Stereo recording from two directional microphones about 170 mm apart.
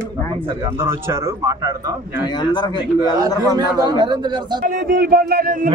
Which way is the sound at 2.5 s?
25° left (ahead or behind).